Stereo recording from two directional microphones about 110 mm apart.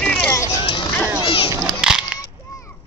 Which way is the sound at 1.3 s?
55° left (ahead or behind).